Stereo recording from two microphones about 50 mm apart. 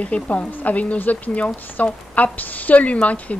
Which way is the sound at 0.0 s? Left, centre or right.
Left.